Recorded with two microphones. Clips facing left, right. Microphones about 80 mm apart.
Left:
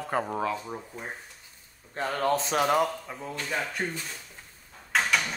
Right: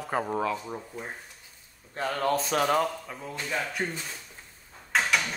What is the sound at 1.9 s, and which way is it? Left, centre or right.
Speech, left.